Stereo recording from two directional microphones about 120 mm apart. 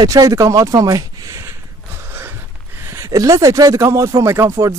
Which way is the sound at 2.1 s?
20° right (ahead or behind).